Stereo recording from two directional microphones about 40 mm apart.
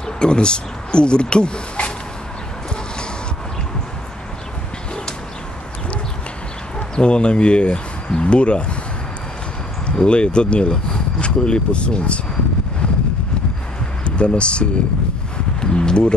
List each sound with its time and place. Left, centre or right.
0.2 s speech: left
7.0 s speech: left
9.8 s speech: left
14.0 s speech: left